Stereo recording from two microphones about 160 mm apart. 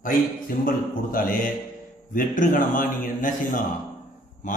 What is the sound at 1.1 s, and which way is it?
A man's voice, 60° left (ahead or behind).